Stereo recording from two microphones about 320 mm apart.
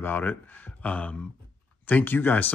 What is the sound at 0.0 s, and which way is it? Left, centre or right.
Speech, centre.